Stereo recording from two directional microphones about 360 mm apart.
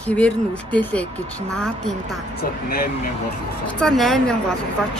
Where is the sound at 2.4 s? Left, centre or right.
Left.